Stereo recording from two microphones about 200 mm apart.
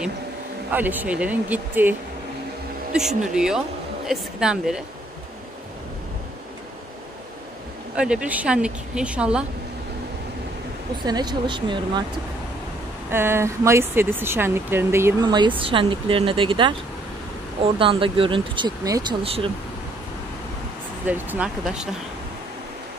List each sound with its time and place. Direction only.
0.7 s speech: 10° right (ahead or behind)
7.9 s speech: 5° right (ahead or behind)
11.1 s speech: 20° right (ahead or behind)
13.1 s speech: 10° right (ahead or behind)
17.7 s speech: 25° right (ahead or behind)
21.1 s speech: 5° right (ahead or behind)